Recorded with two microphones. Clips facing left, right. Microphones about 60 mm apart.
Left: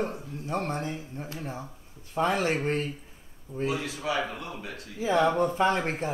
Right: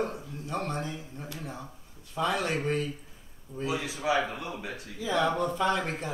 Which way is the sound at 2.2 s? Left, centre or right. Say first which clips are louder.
Left 3 dB; left.